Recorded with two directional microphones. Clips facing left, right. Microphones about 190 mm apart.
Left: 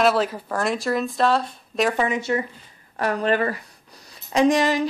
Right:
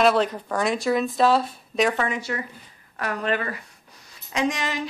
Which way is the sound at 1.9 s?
20° left (ahead or behind).